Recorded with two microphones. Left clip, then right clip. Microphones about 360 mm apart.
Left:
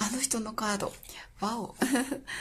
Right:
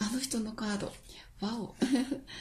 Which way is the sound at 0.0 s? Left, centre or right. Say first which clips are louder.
Left 4 dB; centre.